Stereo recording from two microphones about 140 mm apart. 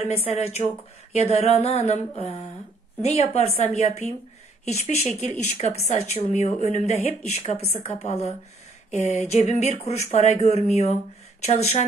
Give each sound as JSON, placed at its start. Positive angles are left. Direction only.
{"t": 0.0, "sound": "speech", "side_deg": 45}